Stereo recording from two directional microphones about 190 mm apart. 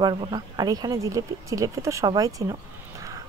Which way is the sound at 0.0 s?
25° right (ahead or behind).